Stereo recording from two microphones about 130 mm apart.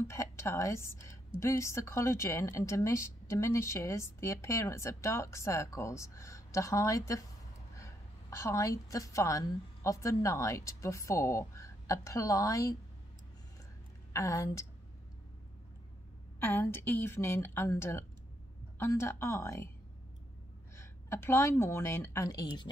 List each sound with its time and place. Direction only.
0.0 s a woman's voice: 20° left (ahead or behind)
14.1 s a woman's voice: 25° left (ahead or behind)
16.4 s a woman's voice: 15° left (ahead or behind)
20.7 s a woman's voice: 20° left (ahead or behind)